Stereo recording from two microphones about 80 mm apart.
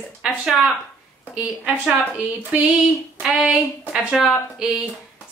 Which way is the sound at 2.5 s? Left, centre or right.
Centre.